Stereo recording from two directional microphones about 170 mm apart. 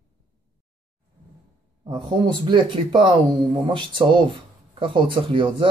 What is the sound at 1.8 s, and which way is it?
Speech, 25° right (ahead or behind).